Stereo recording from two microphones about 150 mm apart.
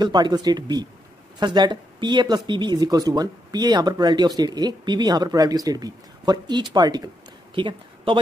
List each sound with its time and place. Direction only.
0.0 s speech: 30° right (ahead or behind)